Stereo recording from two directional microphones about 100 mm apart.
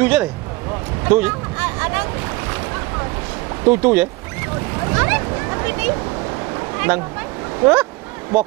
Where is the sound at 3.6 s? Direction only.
20° right (ahead or behind).